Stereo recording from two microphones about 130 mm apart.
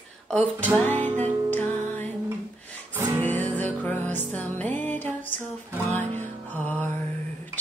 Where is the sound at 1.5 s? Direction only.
15° left (ahead or behind).